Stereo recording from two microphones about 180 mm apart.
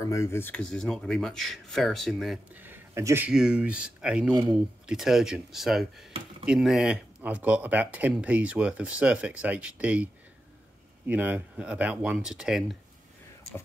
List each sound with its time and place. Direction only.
0.0 s speech: 15° left (ahead or behind); by 3.3 s 15° right (ahead or behind)
3.3 s speech: 5° right (ahead or behind)
4.3 s speech: 25° right (ahead or behind)
4.8 s speech: centre (ahead or behind)
11.1 s speech: 10° right (ahead or behind)